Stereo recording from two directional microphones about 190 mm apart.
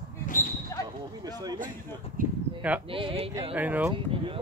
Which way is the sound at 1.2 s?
20° right (ahead or behind).